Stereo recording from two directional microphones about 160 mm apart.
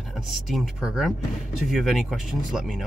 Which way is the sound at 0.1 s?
Centre (ahead or behind).